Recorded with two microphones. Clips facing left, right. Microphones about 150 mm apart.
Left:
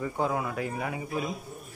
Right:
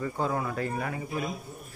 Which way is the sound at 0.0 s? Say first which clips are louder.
Left 1 dB; 10° left (ahead or behind).